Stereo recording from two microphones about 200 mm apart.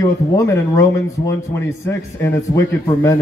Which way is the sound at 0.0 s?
15° left (ahead or behind).